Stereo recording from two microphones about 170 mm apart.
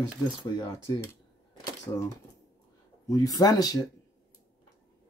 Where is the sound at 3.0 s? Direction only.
20° left (ahead or behind).